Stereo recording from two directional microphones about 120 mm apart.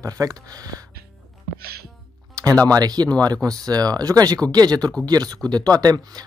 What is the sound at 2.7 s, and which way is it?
Speech, 35° right (ahead or behind).